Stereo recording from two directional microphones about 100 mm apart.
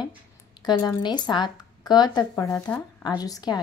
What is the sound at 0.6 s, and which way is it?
Speech, 45° left (ahead or behind).